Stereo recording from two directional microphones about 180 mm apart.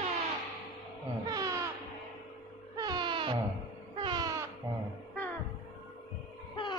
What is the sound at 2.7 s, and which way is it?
Music, 20° right (ahead or behind).